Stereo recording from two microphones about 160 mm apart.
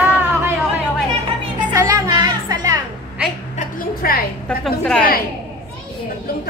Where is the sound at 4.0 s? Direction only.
65° left (ahead or behind).